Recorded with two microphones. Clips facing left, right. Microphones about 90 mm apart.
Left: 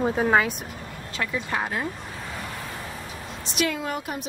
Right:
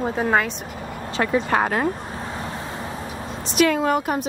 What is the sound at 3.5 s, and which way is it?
Speech, 55° right (ahead or behind).